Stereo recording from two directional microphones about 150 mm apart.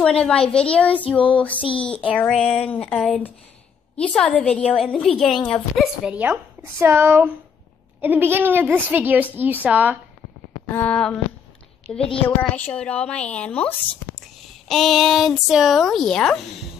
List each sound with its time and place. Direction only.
0.0 s a woman's voice: 5° left (ahead or behind)
6.0 s speech: 10° right (ahead or behind)
10.7 s a woman's voice: 10° left (ahead or behind)
12.0 s a woman's voice: 40° left (ahead or behind)
12.4 s a woman's voice: 10° left (ahead or behind)